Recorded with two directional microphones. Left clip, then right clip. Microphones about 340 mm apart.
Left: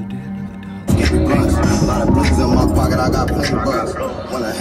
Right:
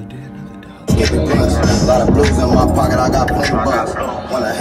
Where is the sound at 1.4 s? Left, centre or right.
Centre.